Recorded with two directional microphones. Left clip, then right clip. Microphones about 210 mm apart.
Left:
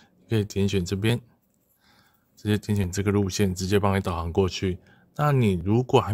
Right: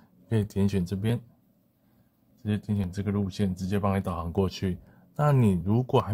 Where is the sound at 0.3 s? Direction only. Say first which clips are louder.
Left 4 dB; 5° left (ahead or behind).